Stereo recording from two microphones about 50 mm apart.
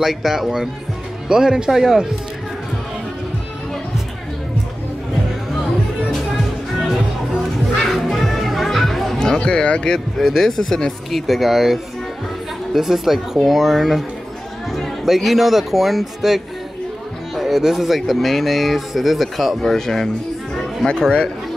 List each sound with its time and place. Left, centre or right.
0.0 s speech: centre
7.8 s children playing: centre
9.2 s speech: centre
10.1 s speech: centre
20.5 s chatter: centre